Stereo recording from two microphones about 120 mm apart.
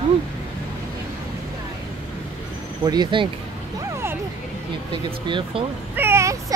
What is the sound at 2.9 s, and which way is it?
Speech, 40° right (ahead or behind).